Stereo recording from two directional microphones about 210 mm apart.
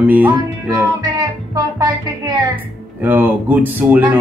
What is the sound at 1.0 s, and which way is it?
Music, 20° right (ahead or behind).